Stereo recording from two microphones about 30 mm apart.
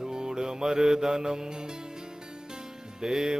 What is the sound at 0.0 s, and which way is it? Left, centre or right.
Music, right.